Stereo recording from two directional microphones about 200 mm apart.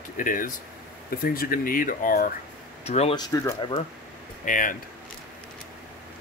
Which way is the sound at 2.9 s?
30° left (ahead or behind).